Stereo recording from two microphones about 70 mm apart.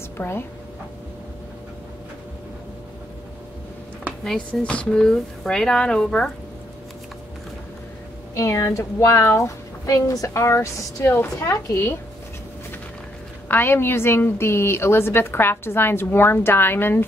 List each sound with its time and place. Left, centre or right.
0.2 s a woman's voice: left
4.5 s speech: centre
8.4 s a woman's voice: left
13.5 s a woman's voice: left